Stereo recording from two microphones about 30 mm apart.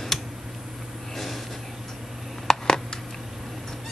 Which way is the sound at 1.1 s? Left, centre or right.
Centre.